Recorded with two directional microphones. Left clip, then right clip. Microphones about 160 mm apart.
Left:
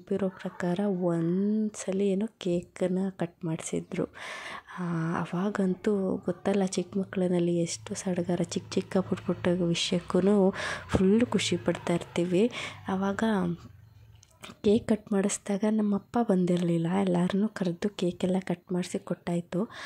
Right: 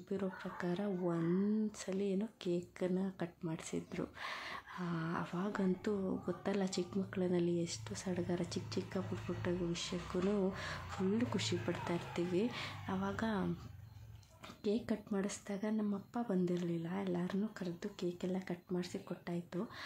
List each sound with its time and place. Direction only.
0.1 s speech: 45° left (ahead or behind)
14.6 s speech: 50° left (ahead or behind)